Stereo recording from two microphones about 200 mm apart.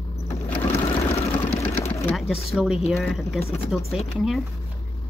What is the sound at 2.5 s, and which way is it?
Speech, centre (ahead or behind).